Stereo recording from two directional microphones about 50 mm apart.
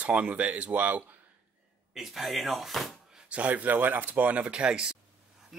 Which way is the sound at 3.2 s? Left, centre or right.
Right.